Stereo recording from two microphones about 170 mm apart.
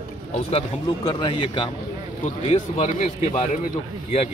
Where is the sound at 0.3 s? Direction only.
35° left (ahead or behind).